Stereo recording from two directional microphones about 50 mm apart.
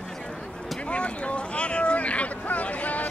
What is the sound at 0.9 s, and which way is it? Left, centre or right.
Boat, left.